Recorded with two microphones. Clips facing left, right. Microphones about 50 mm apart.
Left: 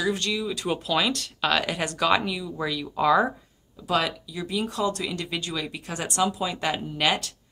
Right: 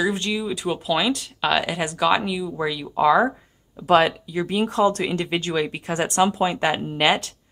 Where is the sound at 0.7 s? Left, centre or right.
Centre.